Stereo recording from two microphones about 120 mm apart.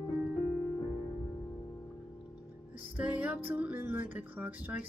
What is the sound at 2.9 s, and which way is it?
Music, 10° right (ahead or behind).